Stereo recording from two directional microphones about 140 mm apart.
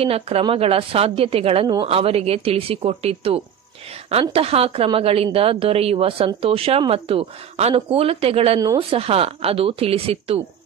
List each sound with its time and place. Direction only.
0.0 s a woman's voice: 45° right (ahead or behind)